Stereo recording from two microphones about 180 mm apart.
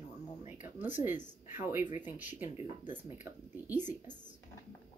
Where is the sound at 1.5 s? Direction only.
10° right (ahead or behind).